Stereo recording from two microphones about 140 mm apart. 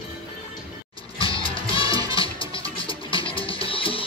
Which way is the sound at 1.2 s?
40° left (ahead or behind).